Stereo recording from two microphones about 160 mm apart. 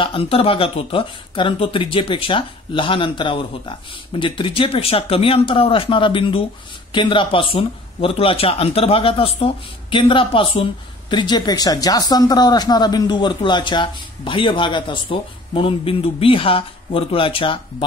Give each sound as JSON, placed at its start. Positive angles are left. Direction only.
{"t": 0.0, "sound": "speech", "side_deg": 35}